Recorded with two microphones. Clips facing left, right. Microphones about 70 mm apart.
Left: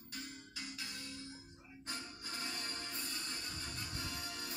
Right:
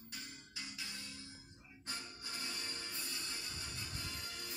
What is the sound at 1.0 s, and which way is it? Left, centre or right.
Music, left.